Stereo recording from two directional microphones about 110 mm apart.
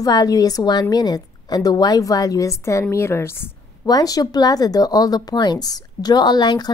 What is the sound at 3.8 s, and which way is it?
A woman's voice, 35° left (ahead or behind).